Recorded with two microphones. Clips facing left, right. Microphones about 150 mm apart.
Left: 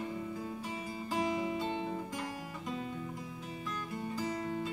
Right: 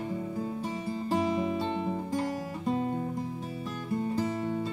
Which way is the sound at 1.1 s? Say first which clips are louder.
Right 5 dB; 30° right (ahead or behind).